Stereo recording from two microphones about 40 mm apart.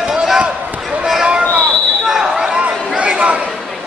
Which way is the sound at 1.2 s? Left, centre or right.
Right.